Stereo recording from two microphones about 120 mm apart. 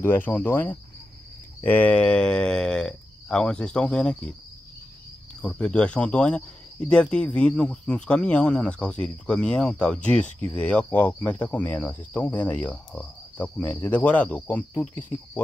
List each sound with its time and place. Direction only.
0.0 s speech: 15° left (ahead or behind)
5.4 s speech: 5° left (ahead or behind)